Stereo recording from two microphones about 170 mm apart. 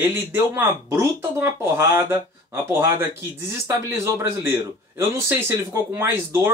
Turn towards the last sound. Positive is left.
turn(degrees=-15)  # may be behind; listen again after turning